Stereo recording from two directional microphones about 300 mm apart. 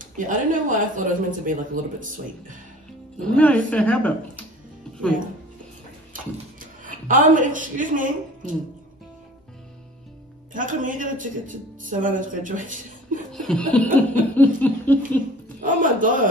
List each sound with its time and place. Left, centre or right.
0.0 s speech: right
3.3 s speech: centre
6.1 s speech: right
10.5 s speech: right
13.3 s speech: centre
15.4 s a sound: right